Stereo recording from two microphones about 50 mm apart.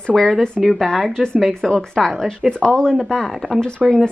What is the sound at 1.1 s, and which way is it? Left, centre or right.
A woman's voice, centre.